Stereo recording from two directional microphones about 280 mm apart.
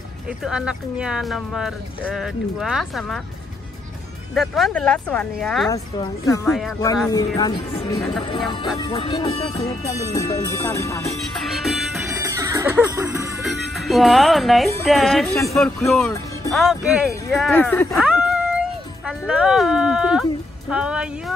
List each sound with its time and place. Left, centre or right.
0.4 s speech: centre
4.3 s speech: centre
11.4 s music: centre
12.1 s music: centre
13.4 s music: centre
14.9 s speech: centre